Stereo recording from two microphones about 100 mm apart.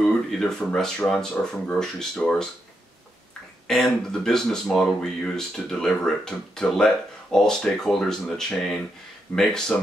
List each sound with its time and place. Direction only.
0.0 s speech: 5° left (ahead or behind)
3.6 s speech: 5° left (ahead or behind)